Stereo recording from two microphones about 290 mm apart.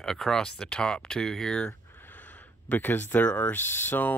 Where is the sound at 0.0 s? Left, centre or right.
Centre.